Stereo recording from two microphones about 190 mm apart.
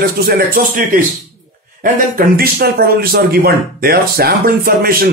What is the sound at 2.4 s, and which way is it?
Speech, 50° right (ahead or behind).